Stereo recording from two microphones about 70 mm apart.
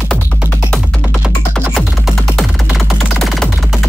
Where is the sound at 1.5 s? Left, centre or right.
Centre.